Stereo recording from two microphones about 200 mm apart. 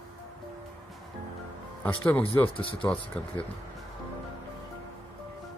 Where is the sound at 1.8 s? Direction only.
10° left (ahead or behind).